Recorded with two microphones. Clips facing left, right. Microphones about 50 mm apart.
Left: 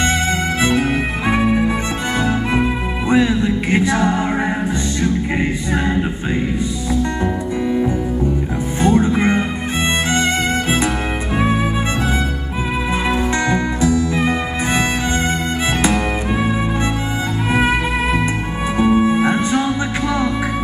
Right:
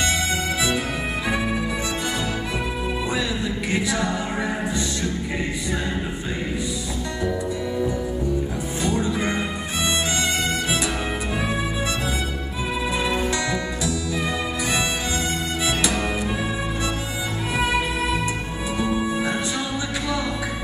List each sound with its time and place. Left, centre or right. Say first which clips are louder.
0.6 s music: left 7 dB; left
3.1 s music: left 10 dB; left
8.8 s music: left 9 dB; left
13.1 s music: left 6 dB; left
18.8 s music: left 10 dB; left